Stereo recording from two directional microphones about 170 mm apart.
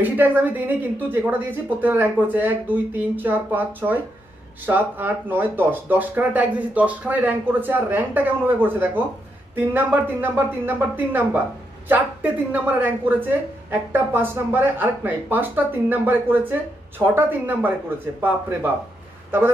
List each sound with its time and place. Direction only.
0.0 s a woman's voice: 10° right (ahead or behind)